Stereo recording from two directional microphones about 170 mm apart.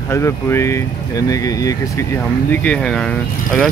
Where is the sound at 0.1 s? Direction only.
15° left (ahead or behind).